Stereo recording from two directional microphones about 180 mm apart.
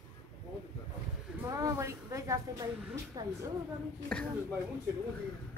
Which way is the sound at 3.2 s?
20° right (ahead or behind).